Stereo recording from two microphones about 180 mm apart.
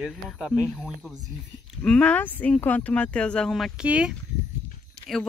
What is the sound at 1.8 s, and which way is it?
Speech, 5° left (ahead or behind).